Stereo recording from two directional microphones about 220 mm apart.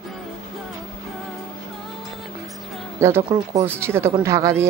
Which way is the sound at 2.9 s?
10° right (ahead or behind).